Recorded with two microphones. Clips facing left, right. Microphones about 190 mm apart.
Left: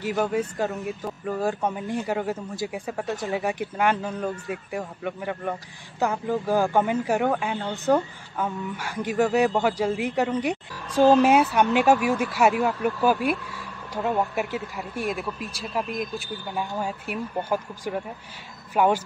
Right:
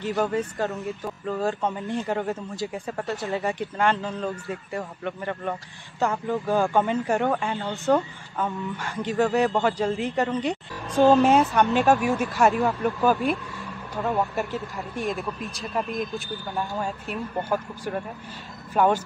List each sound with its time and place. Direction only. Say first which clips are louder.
0.2 s a woman's voice: left 1 dB; 15° left (ahead or behind)
10.9 s speech: even; 15° right (ahead or behind)
11.5 s a woman's voice: even; 15° left (ahead or behind)
11.8 s speech: left 1 dB; centre (ahead or behind)
17.0 s a woman's voice: even; 15° left (ahead or behind)